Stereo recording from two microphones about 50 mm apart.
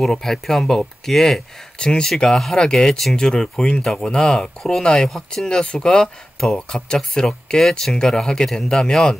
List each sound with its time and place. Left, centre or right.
0.0 s speech: centre